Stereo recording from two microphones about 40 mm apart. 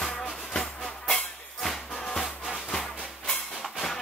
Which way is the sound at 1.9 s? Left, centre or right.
Centre.